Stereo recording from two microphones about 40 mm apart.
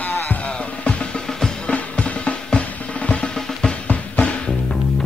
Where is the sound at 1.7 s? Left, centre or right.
Left.